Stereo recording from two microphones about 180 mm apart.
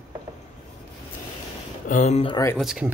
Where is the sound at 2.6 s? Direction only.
Centre (ahead or behind).